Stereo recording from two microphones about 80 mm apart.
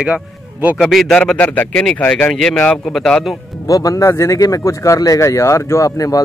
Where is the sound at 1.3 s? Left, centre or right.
Centre.